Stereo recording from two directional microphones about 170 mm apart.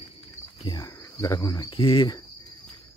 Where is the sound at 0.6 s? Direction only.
20° left (ahead or behind).